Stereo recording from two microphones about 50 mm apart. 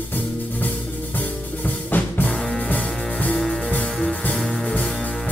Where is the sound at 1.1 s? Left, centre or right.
Left.